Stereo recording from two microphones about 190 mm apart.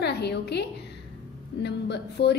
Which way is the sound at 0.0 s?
60° left (ahead or behind).